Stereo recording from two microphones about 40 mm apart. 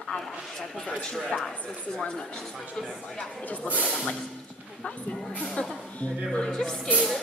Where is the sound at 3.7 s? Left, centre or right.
Right.